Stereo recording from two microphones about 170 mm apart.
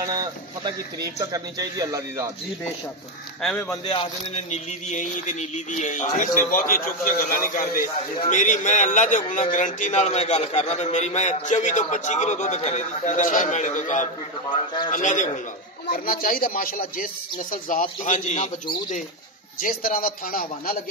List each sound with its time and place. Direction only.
0.0 s a man's voice: 25° right (ahead or behind)
3.4 s speech: 15° left (ahead or behind)
3.8 s a man's voice: 30° left (ahead or behind); by 14.0 s 45° left (ahead or behind)
14.5 s a man's voice: 25° left (ahead or behind)
14.9 s a man's voice: 50° left (ahead or behind)
19.6 s speech: 55° left (ahead or behind)